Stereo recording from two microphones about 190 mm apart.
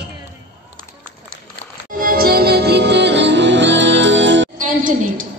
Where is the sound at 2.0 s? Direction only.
50° right (ahead or behind); by 4.5 s 75° right (ahead or behind).